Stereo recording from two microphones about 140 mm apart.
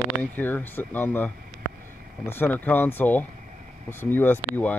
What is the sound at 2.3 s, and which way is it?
Speech, 15° left (ahead or behind).